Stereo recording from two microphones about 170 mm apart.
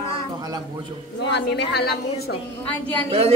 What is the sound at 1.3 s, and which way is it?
Speech, 85° left.